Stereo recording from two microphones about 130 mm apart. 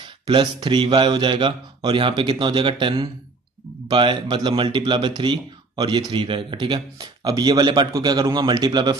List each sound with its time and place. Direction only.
0.0 s speech: 35° right (ahead or behind)